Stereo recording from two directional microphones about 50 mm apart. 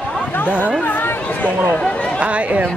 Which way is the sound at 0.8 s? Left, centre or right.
Left.